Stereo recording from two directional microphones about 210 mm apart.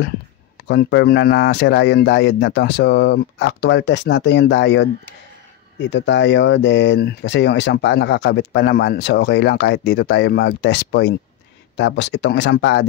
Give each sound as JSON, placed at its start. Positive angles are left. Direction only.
{"t": 0.7, "sound": "speech", "side_deg": 55}